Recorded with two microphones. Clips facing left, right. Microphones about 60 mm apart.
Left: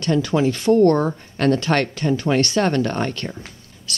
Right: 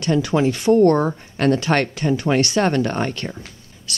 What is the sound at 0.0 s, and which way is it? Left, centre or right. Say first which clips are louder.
Speech: even; centre.